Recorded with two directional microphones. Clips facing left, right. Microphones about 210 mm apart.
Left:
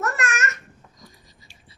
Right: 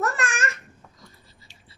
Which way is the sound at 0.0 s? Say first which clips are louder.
Even; 30° right (ahead or behind).